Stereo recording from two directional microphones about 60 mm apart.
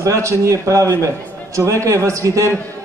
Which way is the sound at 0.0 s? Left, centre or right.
Right.